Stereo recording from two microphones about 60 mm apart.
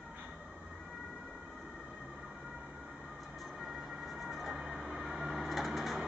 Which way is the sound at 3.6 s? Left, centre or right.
Centre.